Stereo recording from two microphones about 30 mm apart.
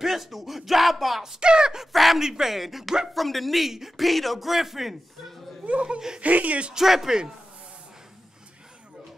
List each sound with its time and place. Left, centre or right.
0.0 s a sound: centre
1.4 s speech: right
1.9 s fowl: centre
2.1 s speech: centre
2.4 s a sound: centre
3.7 s speech: centre
4.0 s a sound: centre
6.2 s speech: right
6.7 s speech: centre